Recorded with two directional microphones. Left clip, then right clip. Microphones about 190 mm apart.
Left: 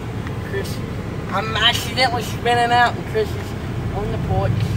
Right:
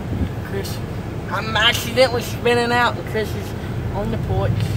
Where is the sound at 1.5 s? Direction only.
40° right (ahead or behind).